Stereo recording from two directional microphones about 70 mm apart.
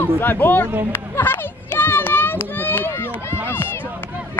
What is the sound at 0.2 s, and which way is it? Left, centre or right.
Speech, left.